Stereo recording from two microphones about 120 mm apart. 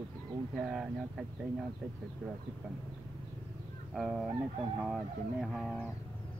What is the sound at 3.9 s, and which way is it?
Speech, centre (ahead or behind).